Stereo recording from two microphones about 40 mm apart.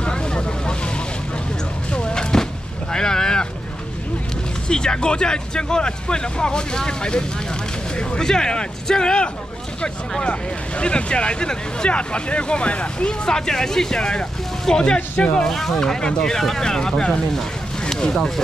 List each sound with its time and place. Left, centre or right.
0.0 s vehicle: left
1.9 s music: left
2.9 s boat: centre
4.6 s speech: left
10.8 s speech: left
15.4 s speech: centre